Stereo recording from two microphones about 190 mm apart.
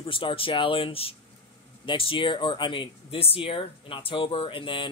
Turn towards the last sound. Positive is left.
turn(degrees=25)  # may be behind; listen again after turning